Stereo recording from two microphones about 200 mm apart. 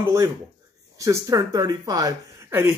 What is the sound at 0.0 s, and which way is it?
Speech, 15° right (ahead or behind).